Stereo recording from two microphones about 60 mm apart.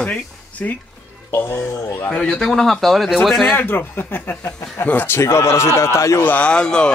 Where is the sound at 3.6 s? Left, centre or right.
Left.